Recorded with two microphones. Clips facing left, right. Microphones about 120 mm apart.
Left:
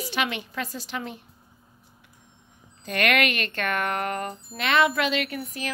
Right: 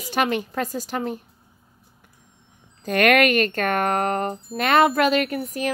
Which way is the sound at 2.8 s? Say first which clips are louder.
Right 6 dB; 45° right (ahead or behind).